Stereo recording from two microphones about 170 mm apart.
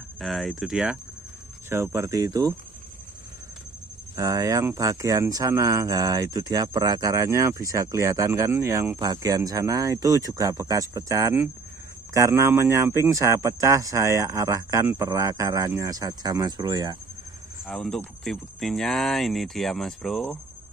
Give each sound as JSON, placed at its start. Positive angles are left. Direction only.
{"t": 0.2, "sound": "speech", "side_deg": 0}
{"t": 1.7, "sound": "speech", "side_deg": -15}
{"t": 4.2, "sound": "speech", "side_deg": -20}
{"t": 17.6, "sound": "speech", "side_deg": 5}